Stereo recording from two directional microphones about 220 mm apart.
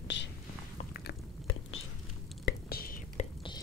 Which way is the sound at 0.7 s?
40° left (ahead or behind).